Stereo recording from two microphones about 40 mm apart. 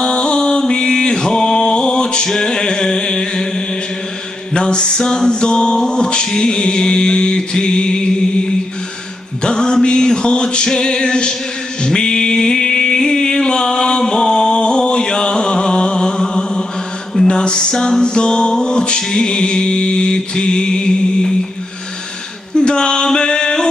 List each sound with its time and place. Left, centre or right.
0.0 s mantra: left
2.2 s music: centre
11.8 s a sound: centre
17.3 s music: left
22.7 s male singing: left